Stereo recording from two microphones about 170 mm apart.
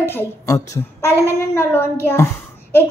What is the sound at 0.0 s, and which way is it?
A child's voice, 15° left (ahead or behind).